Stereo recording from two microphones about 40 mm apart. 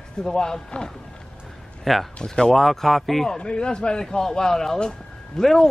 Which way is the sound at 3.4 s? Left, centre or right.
Left.